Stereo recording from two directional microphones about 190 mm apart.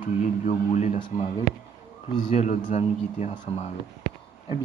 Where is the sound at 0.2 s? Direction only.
35° left (ahead or behind).